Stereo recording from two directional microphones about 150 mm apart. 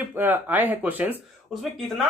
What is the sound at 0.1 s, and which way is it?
Speech, 15° right (ahead or behind).